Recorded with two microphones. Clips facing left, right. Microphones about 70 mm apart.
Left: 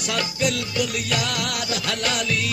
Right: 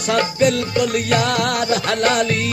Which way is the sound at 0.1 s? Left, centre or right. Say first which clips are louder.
Right 8 dB; right.